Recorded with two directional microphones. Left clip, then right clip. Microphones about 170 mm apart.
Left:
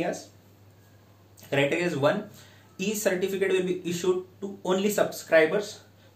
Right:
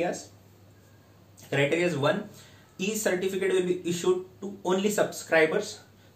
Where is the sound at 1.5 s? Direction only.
20° left (ahead or behind).